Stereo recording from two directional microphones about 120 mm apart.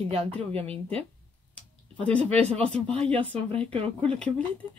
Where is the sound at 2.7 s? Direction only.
50° right (ahead or behind).